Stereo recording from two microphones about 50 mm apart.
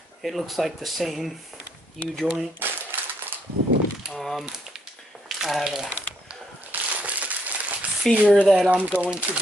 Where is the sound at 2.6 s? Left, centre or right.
Right.